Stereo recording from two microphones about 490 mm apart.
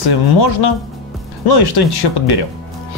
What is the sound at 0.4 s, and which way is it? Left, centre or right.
Speech, left.